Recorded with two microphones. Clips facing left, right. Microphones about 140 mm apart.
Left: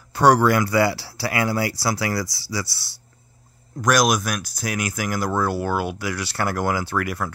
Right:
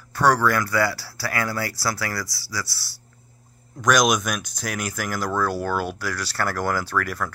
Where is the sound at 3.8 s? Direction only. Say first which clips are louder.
Even; 5° left (ahead or behind).